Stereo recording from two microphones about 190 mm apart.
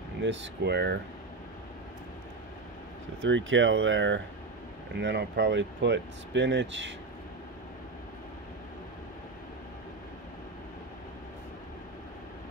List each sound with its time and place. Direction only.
0.2 s speech: 70° right (ahead or behind)
3.2 s speech: 85° right
4.9 s speech: 65° right (ahead or behind)